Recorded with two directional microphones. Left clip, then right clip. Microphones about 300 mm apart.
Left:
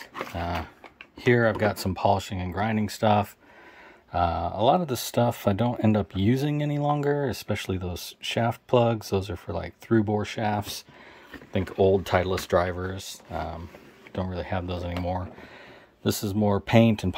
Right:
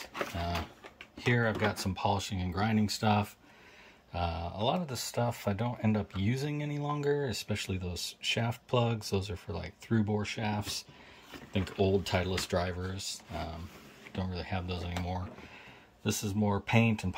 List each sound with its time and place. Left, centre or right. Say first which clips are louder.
1.2 s speech: left 8 dB; centre